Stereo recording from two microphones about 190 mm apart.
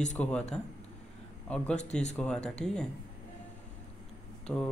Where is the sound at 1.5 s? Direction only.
5° left (ahead or behind).